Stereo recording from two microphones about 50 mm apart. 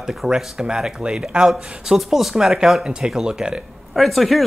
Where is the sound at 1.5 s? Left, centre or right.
Centre.